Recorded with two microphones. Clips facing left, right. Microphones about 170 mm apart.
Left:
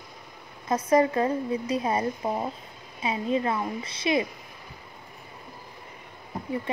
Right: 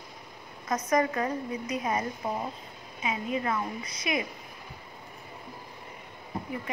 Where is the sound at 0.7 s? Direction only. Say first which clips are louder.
Left 5 dB; 30° left (ahead or behind).